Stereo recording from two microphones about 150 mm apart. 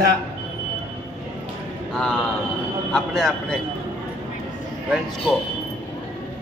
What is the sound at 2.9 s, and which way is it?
Speech, 5° left (ahead or behind).